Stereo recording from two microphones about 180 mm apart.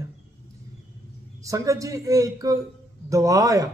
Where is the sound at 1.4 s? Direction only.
20° right (ahead or behind).